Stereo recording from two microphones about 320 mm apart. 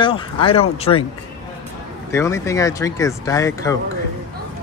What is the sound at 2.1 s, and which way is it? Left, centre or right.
Speech, centre.